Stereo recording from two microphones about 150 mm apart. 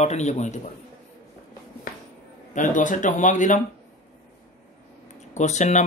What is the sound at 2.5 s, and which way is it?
Speech, 60° left (ahead or behind).